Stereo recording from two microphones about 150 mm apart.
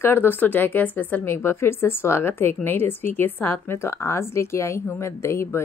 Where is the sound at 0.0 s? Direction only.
15° left (ahead or behind).